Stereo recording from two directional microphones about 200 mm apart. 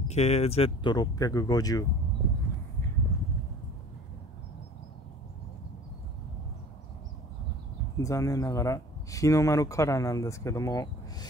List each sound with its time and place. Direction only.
0.1 s speech: 35° left (ahead or behind)
8.0 s speech: 15° left (ahead or behind)